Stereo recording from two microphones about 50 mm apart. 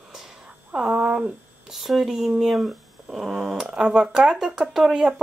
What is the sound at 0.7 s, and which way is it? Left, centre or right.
Speech, centre.